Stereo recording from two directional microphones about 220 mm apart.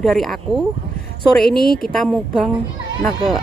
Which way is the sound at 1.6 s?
45° left (ahead or behind).